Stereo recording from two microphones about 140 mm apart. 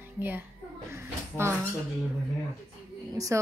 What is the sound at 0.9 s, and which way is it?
Speech, 20° right (ahead or behind).